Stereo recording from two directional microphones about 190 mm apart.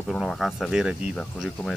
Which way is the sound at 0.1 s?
Centre (ahead or behind).